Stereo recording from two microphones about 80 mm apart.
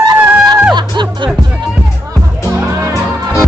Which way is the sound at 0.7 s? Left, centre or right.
Right.